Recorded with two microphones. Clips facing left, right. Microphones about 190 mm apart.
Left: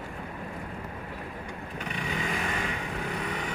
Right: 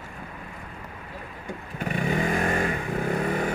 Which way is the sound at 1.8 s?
50° right (ahead or behind).